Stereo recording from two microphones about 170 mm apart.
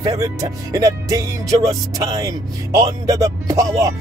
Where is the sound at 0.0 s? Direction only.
20° right (ahead or behind).